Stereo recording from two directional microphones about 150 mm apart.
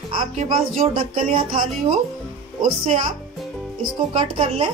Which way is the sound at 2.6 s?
60° right (ahead or behind).